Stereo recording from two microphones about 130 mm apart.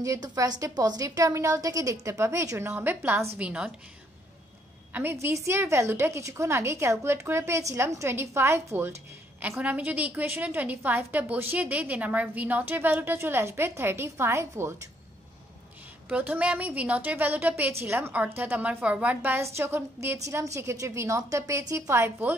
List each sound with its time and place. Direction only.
0.0 s a woman's voice: 30° right (ahead or behind); by 3.7 s 10° right (ahead or behind)
4.9 s a woman's voice: 20° right (ahead or behind)
16.1 s a woman's voice: 10° right (ahead or behind)